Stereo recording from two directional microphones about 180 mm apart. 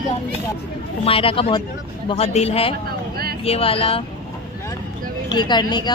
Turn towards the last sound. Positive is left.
turn(degrees=25)  # may be behind; listen again after turning